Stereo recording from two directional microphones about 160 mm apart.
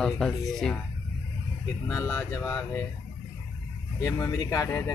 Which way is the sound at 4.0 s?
20° left (ahead or behind).